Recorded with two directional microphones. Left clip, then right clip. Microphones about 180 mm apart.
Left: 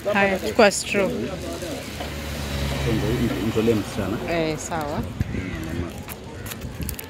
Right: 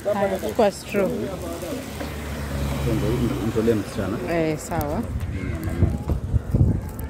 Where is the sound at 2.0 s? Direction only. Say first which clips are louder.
Left 1 dB; 60° right (ahead or behind).